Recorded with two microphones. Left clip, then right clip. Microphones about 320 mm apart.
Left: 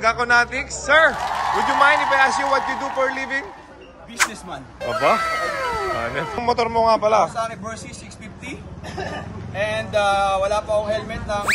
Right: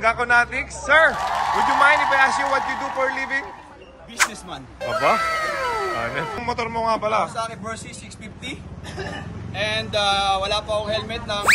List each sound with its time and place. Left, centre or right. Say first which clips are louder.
0.0 s a man's voice: left 1 dB; centre
6.4 s speech: left 7 dB; centre
8.9 s vehicle: left 3 dB; centre
9.5 s a man's voice: left 1 dB; centre